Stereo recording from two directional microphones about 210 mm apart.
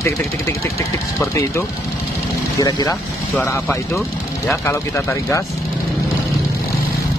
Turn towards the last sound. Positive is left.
turn(degrees=10)  # may be behind; listen again after turning